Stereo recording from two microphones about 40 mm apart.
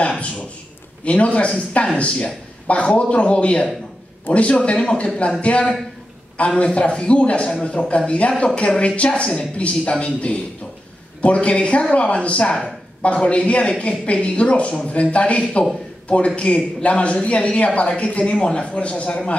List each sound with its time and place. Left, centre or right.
0.0 s a sound: left
1.0 s a man's voice: left
6.3 s a man's voice: left
12.4 s a woman's voice: centre
13.0 s a man's voice: left